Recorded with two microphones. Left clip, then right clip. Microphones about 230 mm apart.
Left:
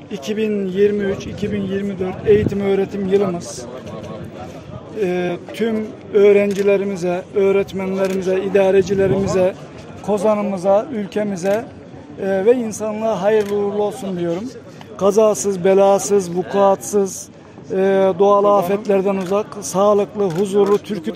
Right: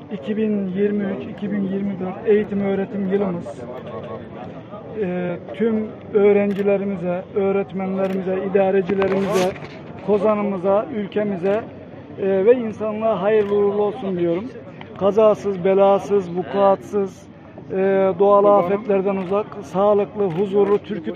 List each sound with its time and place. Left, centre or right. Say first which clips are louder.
0.3 s speech: left 3 dB; left
5.0 s speech: left 5 dB; left
10.0 s speech: left 1 dB; left